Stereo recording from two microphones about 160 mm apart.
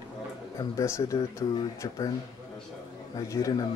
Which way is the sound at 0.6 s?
20° left (ahead or behind).